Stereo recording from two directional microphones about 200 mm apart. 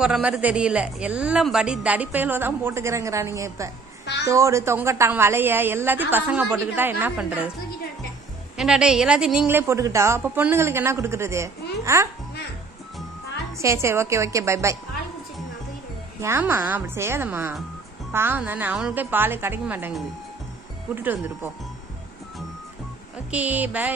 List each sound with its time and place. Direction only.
0.0 s speech: centre (ahead or behind)
4.0 s a sound: 55° left (ahead or behind)
4.3 s speech: 15° right (ahead or behind)
8.5 s speech: 5° right (ahead or behind)
13.6 s speech: 15° right (ahead or behind)
16.2 s speech: 15° right (ahead or behind)
20.9 s speech: 10° right (ahead or behind)
23.3 s speech: 5° right (ahead or behind)